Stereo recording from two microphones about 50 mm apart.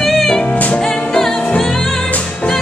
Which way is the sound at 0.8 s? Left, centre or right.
Centre.